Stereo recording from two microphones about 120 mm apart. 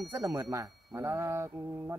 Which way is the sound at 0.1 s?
20° right (ahead or behind).